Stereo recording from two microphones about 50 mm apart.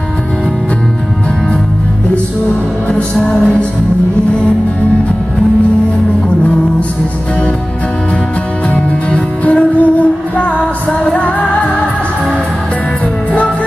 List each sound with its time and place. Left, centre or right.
2.9 s music: left
8.6 s music: left